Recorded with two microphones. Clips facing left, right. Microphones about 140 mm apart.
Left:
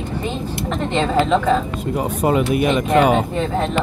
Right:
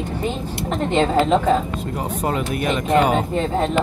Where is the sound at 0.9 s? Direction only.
35° right (ahead or behind).